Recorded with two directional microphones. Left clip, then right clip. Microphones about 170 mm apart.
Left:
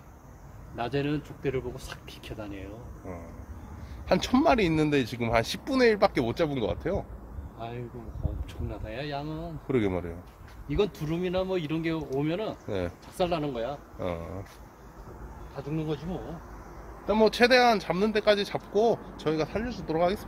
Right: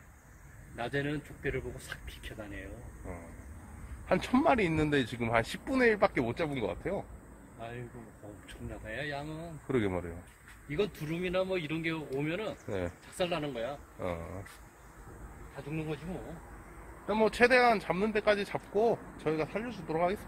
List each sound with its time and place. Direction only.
0.7 s speech: 20° left (ahead or behind)
4.1 s speech: 5° right (ahead or behind)
7.5 s speech: 25° left (ahead or behind)
9.7 s speech: 10° right (ahead or behind)
10.8 s speech: 25° left (ahead or behind)
12.6 s speech: 5° right (ahead or behind)
13.2 s speech: 20° left (ahead or behind)
13.9 s speech: 5° right (ahead or behind)
15.7 s speech: 15° left (ahead or behind)
17.1 s speech: 5° right (ahead or behind)